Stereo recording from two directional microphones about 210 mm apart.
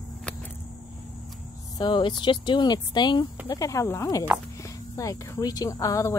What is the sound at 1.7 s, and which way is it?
Speech, 20° left (ahead or behind).